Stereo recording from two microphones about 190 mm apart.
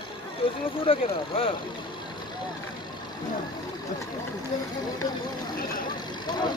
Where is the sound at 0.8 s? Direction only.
30° left (ahead or behind).